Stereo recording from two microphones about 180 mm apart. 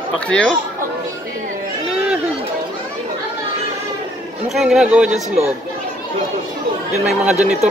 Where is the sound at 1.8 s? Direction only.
5° right (ahead or behind).